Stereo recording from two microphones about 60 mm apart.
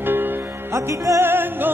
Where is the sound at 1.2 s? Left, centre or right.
Right.